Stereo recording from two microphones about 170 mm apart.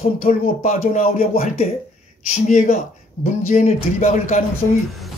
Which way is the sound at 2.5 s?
50° left (ahead or behind).